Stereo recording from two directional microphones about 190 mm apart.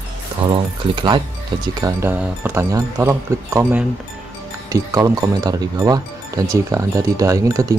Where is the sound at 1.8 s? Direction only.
10° right (ahead or behind).